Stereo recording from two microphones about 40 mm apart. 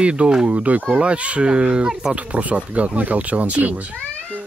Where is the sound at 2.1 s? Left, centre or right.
Right.